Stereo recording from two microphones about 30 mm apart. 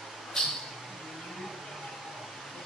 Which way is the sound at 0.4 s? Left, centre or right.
Centre.